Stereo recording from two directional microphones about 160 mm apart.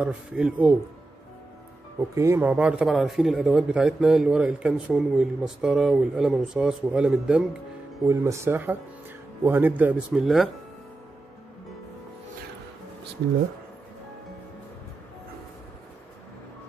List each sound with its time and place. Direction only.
0.0 s speech: 5° right (ahead or behind)
2.0 s speech: 15° right (ahead or behind)
8.1 s speech: 15° right (ahead or behind); by 10.5 s centre (ahead or behind)